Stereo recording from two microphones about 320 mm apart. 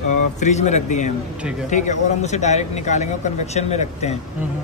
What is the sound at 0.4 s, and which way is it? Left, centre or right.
Speech, left.